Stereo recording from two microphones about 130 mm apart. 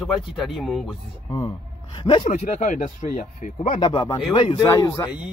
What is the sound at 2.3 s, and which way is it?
Speech, 65° left (ahead or behind).